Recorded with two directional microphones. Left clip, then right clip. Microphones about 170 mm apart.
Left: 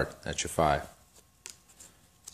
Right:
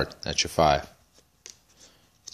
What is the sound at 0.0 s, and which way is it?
Speech, 35° right (ahead or behind).